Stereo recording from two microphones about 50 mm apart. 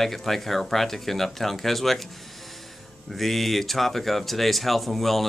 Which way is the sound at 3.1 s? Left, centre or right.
Centre.